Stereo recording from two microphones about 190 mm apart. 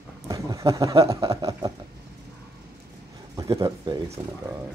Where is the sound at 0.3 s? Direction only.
15° right (ahead or behind).